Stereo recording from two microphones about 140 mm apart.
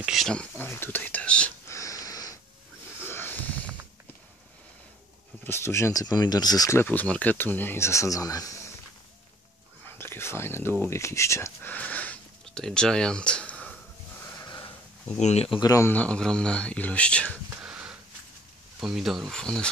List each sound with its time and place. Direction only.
0.0 s speech: centre (ahead or behind)
1.7 s wheeze: 20° left (ahead or behind)
3.1 s a sound: 15° left (ahead or behind)
5.4 s speech: 20° left (ahead or behind)
9.8 s speech: 15° left (ahead or behind)
14.2 s a sound: 25° left (ahead or behind)
15.1 s speech: 50° left (ahead or behind)
15.6 s speech: 25° left (ahead or behind)
15.9 s speech: 10° left (ahead or behind)
17.6 s a sound: 10° right (ahead or behind)
18.8 s speech: 5° right (ahead or behind)